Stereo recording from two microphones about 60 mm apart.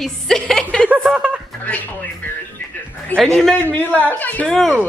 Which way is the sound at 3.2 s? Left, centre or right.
Centre.